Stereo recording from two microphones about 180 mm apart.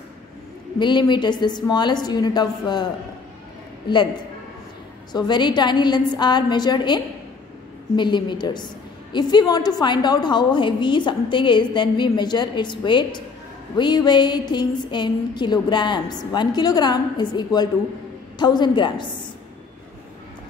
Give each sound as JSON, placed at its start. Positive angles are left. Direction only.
{"t": 0.7, "sound": "a woman's voice", "side_deg": 25}
{"t": 5.1, "sound": "a woman's voice", "side_deg": 25}